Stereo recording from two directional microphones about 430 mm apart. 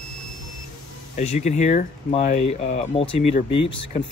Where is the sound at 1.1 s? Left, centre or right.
Centre.